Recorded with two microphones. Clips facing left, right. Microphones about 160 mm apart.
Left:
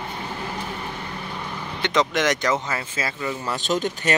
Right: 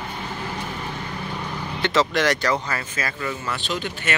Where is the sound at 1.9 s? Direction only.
20° left (ahead or behind).